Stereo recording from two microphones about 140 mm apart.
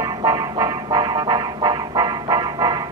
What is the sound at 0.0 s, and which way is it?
Music, 30° right (ahead or behind).